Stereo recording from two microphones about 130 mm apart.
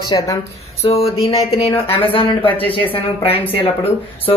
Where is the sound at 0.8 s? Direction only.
50° left (ahead or behind).